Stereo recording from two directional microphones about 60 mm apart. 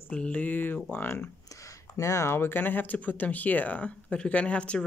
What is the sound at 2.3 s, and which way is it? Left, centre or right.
Speech, left.